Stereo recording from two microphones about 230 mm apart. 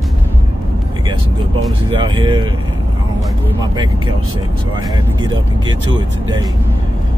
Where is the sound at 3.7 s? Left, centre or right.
Centre.